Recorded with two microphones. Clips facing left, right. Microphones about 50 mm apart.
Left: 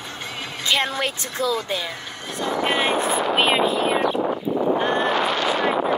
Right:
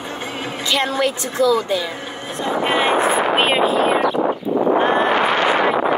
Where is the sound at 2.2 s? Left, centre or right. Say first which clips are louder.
Right 3 dB; centre.